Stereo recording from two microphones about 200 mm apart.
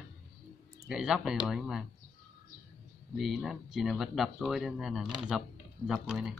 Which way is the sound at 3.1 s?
Centre (ahead or behind).